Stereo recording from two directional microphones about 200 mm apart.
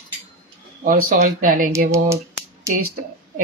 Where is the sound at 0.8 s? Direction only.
45° right (ahead or behind).